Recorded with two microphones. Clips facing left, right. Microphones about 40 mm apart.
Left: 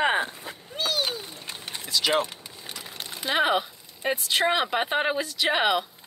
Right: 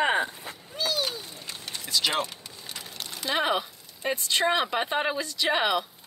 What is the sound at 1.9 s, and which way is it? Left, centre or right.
Speech, centre.